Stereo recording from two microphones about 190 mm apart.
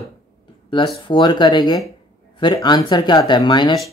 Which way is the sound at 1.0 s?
25° left (ahead or behind).